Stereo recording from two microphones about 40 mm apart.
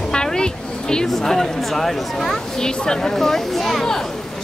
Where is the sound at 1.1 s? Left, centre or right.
Centre.